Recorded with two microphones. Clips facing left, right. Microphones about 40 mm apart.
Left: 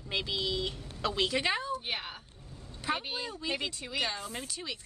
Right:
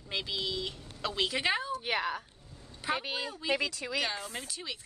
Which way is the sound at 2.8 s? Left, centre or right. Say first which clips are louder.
Right 1 dB; centre.